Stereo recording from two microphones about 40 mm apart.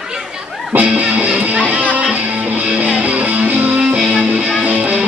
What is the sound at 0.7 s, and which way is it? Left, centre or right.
Music, right.